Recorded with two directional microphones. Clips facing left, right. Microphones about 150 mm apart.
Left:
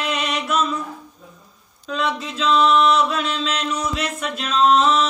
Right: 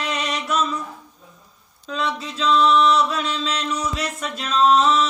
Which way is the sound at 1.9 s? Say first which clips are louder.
Left 2 dB; 35° right (ahead or behind).